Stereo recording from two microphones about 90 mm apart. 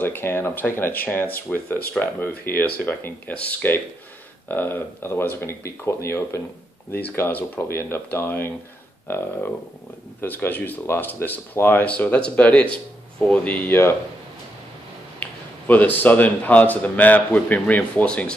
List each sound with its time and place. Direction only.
0.0 s speech: 25° left (ahead or behind)
6.9 s speech: 20° left (ahead or behind)
15.1 s speech: 20° left (ahead or behind)